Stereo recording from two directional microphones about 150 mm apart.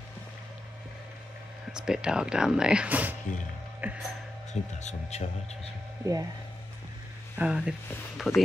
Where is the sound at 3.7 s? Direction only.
10° right (ahead or behind).